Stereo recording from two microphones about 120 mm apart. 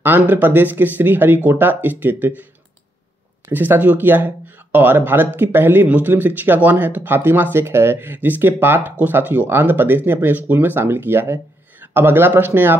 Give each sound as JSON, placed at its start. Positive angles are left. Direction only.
{"t": 0.0, "sound": "speech", "side_deg": -15}
{"t": 3.4, "sound": "speech", "side_deg": -15}